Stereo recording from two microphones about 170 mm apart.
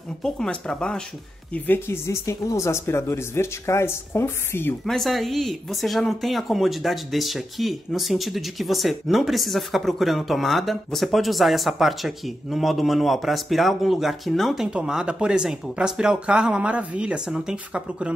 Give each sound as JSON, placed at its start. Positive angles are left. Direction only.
{"t": 0.2, "sound": "speech", "side_deg": 5}
{"t": 4.8, "sound": "speech", "side_deg": 0}